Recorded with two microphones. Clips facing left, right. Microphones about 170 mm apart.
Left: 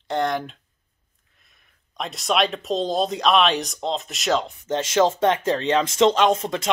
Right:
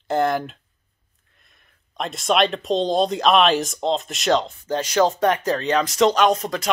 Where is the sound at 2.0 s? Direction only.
Centre (ahead or behind).